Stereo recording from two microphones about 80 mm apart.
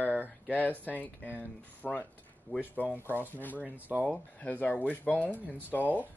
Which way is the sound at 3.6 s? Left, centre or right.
Centre.